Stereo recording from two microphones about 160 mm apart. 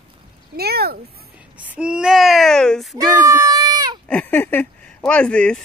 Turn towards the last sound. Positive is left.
turn(degrees=5)  # may be behind; listen again after turning